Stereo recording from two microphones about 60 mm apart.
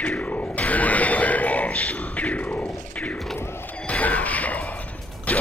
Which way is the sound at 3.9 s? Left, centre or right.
Left.